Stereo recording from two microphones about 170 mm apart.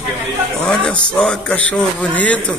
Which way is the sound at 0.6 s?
5° left (ahead or behind).